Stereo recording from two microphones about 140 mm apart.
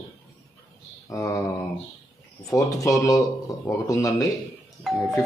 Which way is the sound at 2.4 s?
25° left (ahead or behind).